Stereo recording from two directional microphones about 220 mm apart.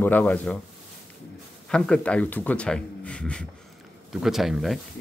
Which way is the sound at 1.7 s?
5° left (ahead or behind).